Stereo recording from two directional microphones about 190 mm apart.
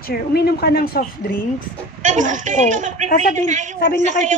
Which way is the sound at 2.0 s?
40° right (ahead or behind).